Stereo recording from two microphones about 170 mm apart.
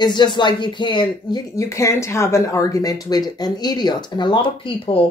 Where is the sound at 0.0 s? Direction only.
25° left (ahead or behind).